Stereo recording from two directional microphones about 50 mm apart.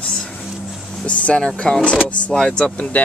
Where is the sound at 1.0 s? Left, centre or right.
Left.